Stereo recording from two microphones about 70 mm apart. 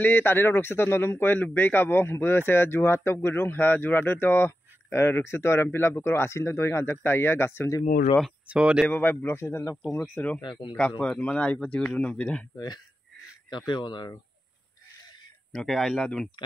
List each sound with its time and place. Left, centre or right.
0.0 s speech: left
8.5 s speech: centre
8.8 s speech: left
9.4 s speech: left
10.2 s speech: centre
11.9 s speech: left
12.5 s speech: left
15.5 s speech: centre